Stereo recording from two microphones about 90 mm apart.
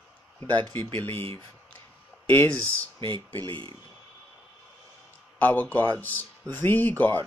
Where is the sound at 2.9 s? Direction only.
65° right (ahead or behind).